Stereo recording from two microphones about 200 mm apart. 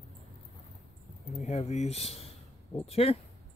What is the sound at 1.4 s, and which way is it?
Speech, 35° left (ahead or behind).